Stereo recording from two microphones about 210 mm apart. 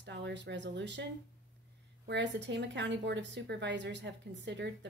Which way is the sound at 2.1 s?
55° right (ahead or behind).